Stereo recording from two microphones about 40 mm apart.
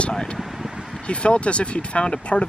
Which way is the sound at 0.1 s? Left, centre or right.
Centre.